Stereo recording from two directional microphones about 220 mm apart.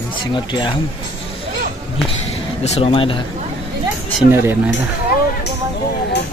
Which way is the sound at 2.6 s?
30° left (ahead or behind).